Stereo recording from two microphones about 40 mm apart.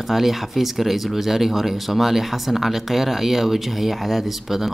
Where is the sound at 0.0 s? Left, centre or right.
Centre.